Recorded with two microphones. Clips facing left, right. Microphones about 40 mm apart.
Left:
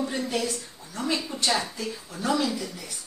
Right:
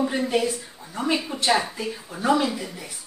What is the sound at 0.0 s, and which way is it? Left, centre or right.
A woman's voice, right.